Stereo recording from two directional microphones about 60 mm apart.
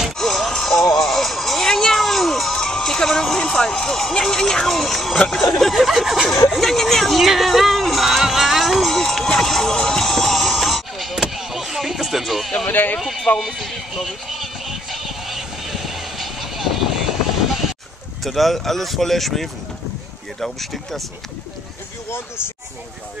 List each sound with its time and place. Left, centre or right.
0.2 s a sound: centre
6.5 s music: centre
12.6 s speech: left
13.0 s speech: centre
13.7 s vehicle: centre
18.2 s speech: centre